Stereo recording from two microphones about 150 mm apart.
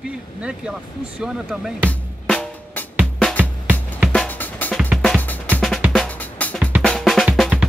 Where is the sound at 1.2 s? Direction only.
5° right (ahead or behind).